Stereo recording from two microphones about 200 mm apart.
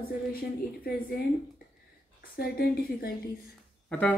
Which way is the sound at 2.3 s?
50° left (ahead or behind).